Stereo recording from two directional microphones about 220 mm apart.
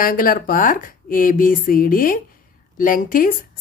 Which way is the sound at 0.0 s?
40° left (ahead or behind).